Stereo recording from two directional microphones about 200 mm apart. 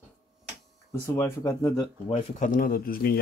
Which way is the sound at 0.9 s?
15° left (ahead or behind).